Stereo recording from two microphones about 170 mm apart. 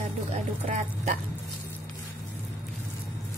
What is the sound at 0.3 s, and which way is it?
Speech, 45° right (ahead or behind).